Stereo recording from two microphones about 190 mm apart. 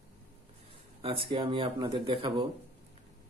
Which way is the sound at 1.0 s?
30° right (ahead or behind).